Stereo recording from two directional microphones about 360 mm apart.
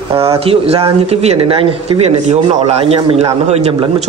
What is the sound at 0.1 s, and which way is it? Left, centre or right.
Speech, centre.